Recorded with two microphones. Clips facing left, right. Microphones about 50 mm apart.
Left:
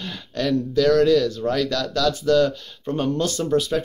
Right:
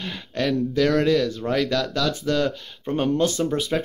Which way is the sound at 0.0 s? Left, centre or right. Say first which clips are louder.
Even; centre.